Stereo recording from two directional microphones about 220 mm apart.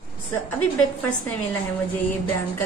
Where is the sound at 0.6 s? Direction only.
90° left.